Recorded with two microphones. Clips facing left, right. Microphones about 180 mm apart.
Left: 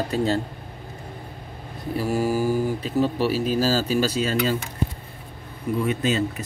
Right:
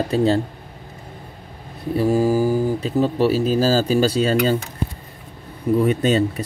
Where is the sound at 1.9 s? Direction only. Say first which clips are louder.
Right 6 dB; 20° right (ahead or behind).